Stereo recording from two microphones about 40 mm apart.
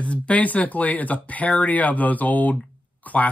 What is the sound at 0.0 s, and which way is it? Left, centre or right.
Speech, left.